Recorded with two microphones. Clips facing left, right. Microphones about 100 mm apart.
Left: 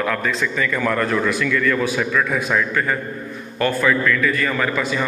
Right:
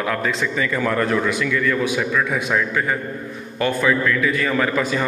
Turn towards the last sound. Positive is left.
turn(degrees=-40)  # may be behind; listen again after turning